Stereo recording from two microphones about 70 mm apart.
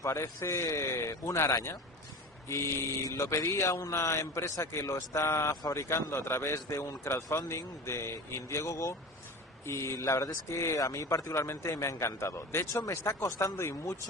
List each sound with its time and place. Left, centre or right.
0.0 s speech: left
3.2 s speech: left
5.5 s speech: left